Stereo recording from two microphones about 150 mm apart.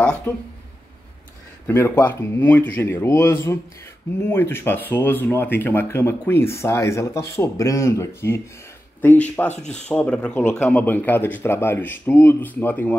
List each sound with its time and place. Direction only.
0.3 s speech: 15° left (ahead or behind)
1.7 s speech: 15° left (ahead or behind)